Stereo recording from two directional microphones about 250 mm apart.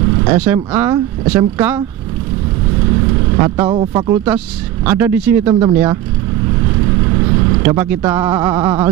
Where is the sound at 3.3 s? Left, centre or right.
Centre.